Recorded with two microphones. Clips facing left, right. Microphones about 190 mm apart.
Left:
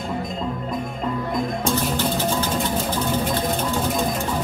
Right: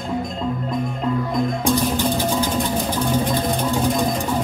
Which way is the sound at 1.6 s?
15° right (ahead or behind).